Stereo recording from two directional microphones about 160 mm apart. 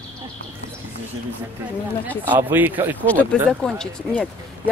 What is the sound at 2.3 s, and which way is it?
Speech, 10° right (ahead or behind).